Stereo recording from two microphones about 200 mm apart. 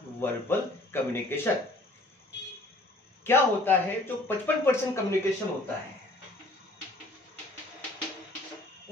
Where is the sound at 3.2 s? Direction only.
10° left (ahead or behind).